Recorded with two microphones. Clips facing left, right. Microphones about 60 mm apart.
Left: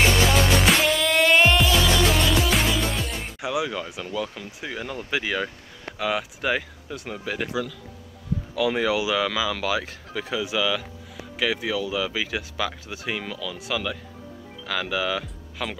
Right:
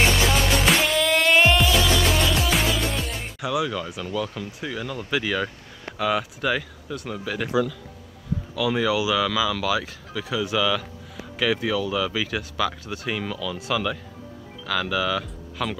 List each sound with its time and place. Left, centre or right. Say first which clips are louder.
0.1 s music: left 1 dB; centre
3.3 s speech: right 2 dB; centre
6.4 s speech: right 1 dB; centre
8.5 s speech: even; left
9.2 s speech: right 2 dB; left
10.4 s speech: right 3 dB; centre
14.7 s speech: right 2 dB; centre